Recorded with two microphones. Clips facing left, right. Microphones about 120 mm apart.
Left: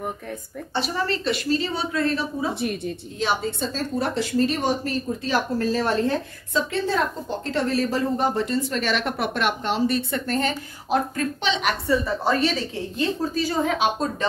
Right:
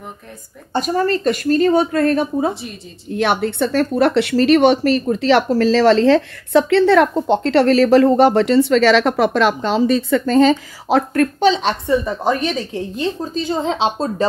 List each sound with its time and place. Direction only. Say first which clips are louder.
0.7 s a woman's voice: right 8 dB; 45° right (ahead or behind)
3.1 s speech: right 8 dB; 65° right (ahead or behind); by 11.2 s 90° right
11.3 s a woman's voice: right 8 dB; 35° right (ahead or behind)
11.9 s a woman's voice: right 4 dB; 20° right (ahead or behind)